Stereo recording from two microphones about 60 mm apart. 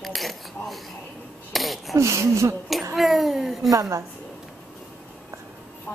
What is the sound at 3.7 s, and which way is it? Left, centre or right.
Speech, right.